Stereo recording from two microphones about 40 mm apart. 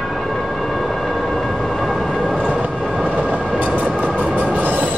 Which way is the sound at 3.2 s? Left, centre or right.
Right.